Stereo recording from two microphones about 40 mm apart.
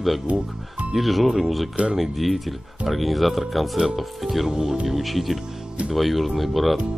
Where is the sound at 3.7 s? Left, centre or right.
Centre.